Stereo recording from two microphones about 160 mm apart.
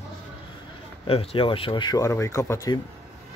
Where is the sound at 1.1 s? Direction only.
35° left (ahead or behind); by 2.8 s 20° left (ahead or behind).